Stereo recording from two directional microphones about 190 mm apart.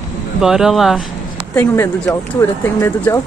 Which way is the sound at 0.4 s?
5° right (ahead or behind).